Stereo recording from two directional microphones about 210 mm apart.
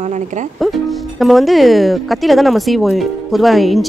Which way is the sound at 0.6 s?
Centre (ahead or behind).